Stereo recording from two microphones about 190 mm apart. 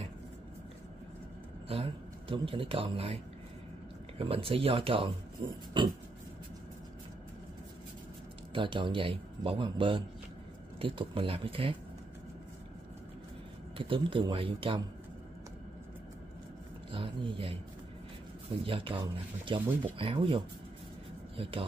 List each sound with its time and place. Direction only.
1.7 s speech: 30° right (ahead or behind)
4.2 s speech: 30° right (ahead or behind)
8.5 s speech: 25° right (ahead or behind)
13.7 s speech: 30° right (ahead or behind)
16.9 s speech: 25° right (ahead or behind)
18.6 s speech: 30° right (ahead or behind)